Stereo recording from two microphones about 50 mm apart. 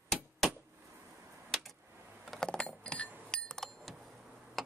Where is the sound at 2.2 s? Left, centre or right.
Centre.